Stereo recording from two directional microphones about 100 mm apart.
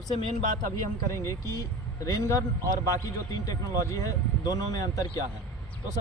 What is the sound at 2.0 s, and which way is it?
A man's voice, 35° left (ahead or behind).